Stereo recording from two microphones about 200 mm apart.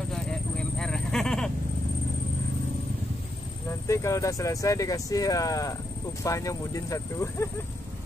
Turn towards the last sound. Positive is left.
turn(degrees=15)  # may be behind; listen again after turning